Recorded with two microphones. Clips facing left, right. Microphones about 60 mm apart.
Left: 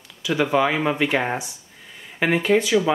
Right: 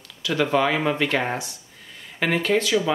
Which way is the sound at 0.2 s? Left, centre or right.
Centre.